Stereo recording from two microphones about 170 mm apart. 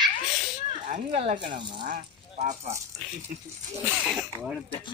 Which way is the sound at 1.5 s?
30° right (ahead or behind).